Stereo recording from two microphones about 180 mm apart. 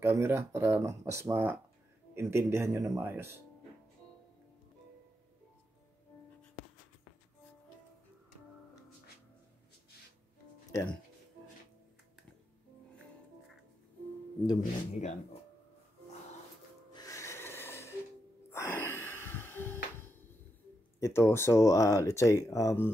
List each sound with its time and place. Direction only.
0.0 s speech: 15° right (ahead or behind)
10.7 s speech: 15° left (ahead or behind)
14.6 s speech: 40° left (ahead or behind)
16.9 s snort: 20° left (ahead or behind)
18.5 s gasp: 15° left (ahead or behind)
21.0 s speech: 15° left (ahead or behind)